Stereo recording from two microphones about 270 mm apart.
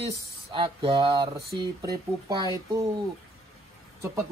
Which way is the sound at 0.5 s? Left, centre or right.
Centre.